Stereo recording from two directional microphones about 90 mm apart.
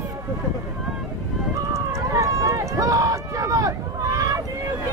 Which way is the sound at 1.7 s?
35° right (ahead or behind).